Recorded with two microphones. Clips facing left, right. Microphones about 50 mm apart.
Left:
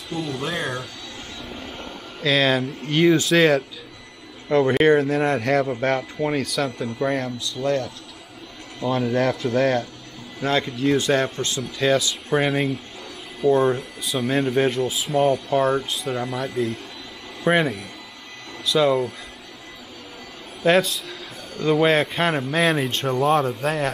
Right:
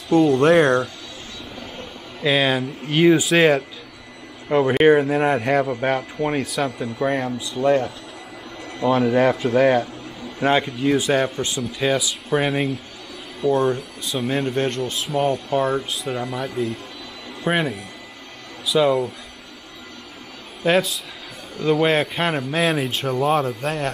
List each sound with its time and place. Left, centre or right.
0.4 s speech: right
2.2 s speech: centre
20.6 s speech: centre